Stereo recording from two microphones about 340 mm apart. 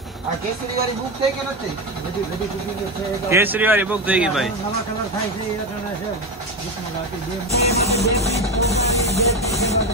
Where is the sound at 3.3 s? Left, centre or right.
Centre.